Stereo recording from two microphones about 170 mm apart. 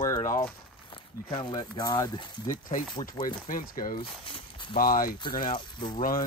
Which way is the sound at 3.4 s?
55° left (ahead or behind).